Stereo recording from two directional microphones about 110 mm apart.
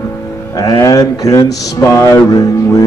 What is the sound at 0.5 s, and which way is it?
Music, 35° left (ahead or behind).